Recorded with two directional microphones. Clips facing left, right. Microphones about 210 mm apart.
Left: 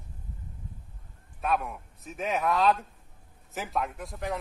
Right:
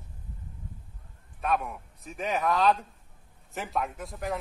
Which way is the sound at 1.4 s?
Centre (ahead or behind).